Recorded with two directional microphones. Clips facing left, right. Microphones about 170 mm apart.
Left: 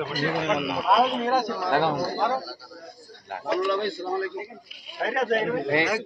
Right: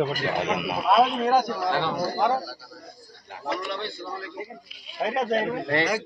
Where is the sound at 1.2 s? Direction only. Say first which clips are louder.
Right 2 dB; 10° right (ahead or behind).